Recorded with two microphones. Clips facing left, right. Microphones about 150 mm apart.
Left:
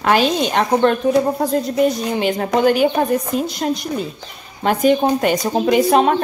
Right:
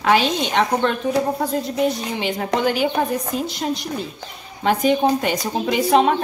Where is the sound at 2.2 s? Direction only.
50° left (ahead or behind).